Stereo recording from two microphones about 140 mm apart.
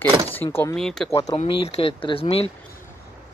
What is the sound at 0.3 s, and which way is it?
Speech, 15° left (ahead or behind).